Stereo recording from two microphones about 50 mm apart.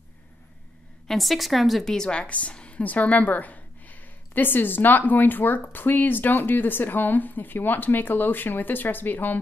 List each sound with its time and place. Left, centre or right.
1.0 s a woman's voice: centre
2.0 s a woman's voice: centre; by 9.4 s left